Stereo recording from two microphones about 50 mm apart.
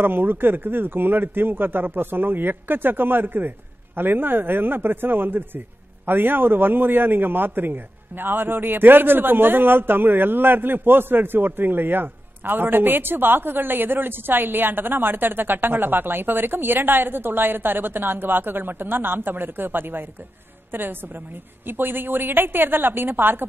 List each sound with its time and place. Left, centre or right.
0.0 s a man's voice: right